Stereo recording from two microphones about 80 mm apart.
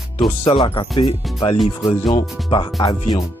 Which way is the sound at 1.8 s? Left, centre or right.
Left.